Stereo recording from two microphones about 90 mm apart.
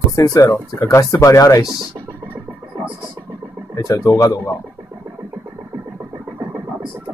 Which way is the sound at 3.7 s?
40° left (ahead or behind).